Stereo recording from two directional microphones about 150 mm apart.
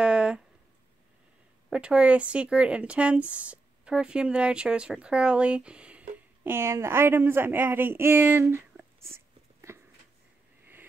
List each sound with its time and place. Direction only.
0.0 s a sound: 5° right (ahead or behind)
1.7 s speech: 5° right (ahead or behind)
9.1 s dog: 15° right (ahead or behind)